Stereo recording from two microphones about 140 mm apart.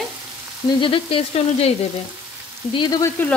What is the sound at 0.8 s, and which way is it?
Frying, 40° left (ahead or behind).